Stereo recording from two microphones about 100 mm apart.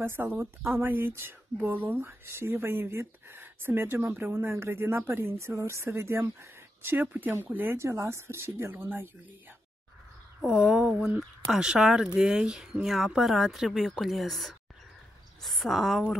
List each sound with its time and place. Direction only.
0.0 s speech: 25° right (ahead or behind)
10.4 s speech: 5° right (ahead or behind)